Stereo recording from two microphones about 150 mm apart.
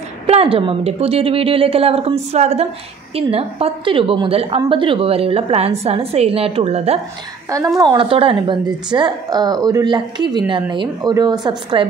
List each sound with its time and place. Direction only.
0.3 s a woman's voice: 40° right (ahead or behind)
7.8 s a woman's voice: 30° right (ahead or behind)